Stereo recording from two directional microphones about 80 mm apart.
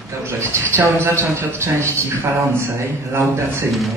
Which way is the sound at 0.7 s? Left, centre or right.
Right.